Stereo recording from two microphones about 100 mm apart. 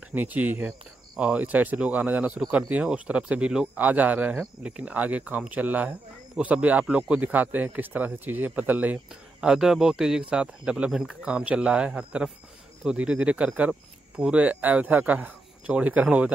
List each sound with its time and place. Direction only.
0.1 s speech: 15° right (ahead or behind)